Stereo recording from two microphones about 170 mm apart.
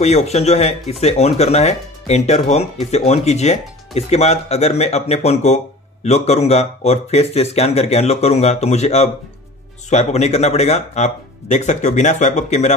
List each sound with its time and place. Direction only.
0.0 s speech: 40° left (ahead or behind)